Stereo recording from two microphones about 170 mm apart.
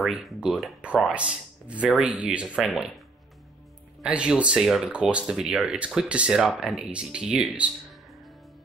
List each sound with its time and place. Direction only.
0.0 s speech: 5° right (ahead or behind)
4.0 s speech: 5° right (ahead or behind)